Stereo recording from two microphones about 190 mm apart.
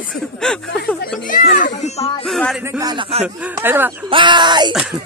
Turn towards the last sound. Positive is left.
turn(degrees=-25)  # may be behind; listen again after turning